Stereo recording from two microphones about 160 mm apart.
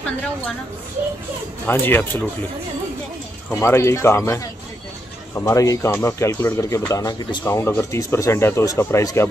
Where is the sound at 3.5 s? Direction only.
15° left (ahead or behind).